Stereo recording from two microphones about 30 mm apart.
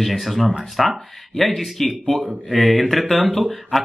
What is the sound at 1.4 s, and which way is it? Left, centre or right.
Speech, centre.